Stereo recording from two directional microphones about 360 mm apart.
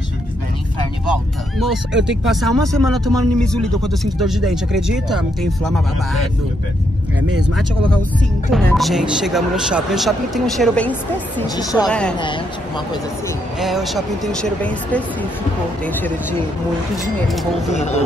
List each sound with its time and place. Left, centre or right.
2.2 s speech: centre
7.2 s speech: right
8.5 s speech: centre
13.6 s speech: centre
17.7 s speech: centre